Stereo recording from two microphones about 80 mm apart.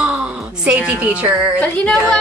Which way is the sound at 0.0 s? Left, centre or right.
Centre.